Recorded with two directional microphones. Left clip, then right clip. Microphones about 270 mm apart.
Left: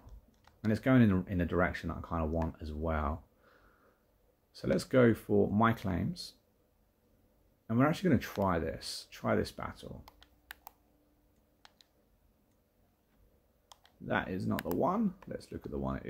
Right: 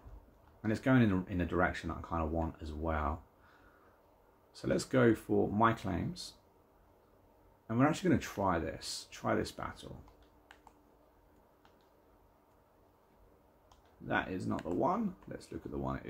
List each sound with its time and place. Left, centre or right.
0.7 s speech: left
4.6 s speech: left
7.6 s speech: left
14.0 s speech: left